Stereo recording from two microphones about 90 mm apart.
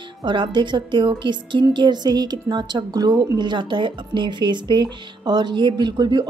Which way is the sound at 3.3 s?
60° right (ahead or behind).